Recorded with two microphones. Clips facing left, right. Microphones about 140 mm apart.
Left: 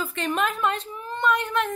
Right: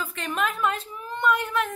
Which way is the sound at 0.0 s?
Centre (ahead or behind).